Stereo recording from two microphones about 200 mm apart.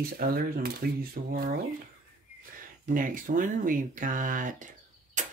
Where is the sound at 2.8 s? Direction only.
40° right (ahead or behind).